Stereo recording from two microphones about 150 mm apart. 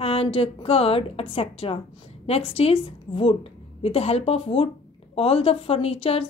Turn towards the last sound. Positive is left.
turn(degrees=40)  # may be behind; listen again after turning